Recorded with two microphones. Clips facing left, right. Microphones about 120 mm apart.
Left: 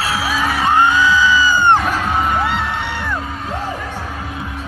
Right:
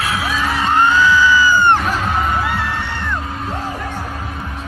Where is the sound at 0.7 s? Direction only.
15° left (ahead or behind).